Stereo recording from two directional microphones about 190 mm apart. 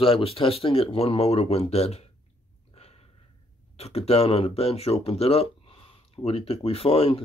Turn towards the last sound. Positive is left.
turn(degrees=30)  # may be behind; listen again after turning